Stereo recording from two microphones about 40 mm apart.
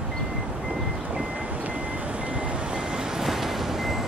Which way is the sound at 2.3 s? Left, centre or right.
Right.